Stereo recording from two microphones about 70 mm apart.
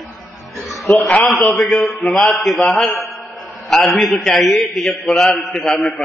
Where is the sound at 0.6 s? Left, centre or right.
Centre.